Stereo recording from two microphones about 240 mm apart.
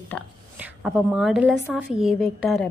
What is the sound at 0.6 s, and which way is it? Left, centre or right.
A woman's voice, centre.